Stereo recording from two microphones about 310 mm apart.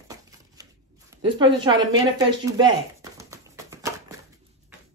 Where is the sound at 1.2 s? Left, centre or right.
Centre.